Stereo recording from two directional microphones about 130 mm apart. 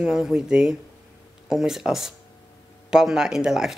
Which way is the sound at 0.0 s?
5° right (ahead or behind).